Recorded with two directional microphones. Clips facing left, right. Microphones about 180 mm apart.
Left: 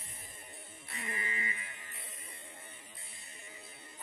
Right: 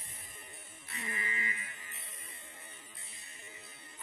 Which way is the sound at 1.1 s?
30° left (ahead or behind).